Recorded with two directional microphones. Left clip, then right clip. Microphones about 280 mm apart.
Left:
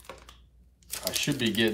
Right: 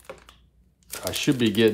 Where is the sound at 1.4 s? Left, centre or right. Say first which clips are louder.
Right 6 dB; right.